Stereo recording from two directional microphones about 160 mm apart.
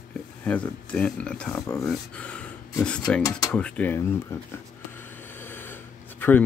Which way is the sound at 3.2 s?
20° left (ahead or behind).